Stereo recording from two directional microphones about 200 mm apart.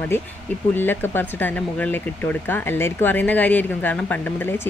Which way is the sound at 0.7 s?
10° left (ahead or behind).